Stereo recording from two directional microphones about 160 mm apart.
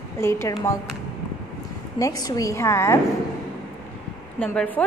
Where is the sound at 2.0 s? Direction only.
20° left (ahead or behind).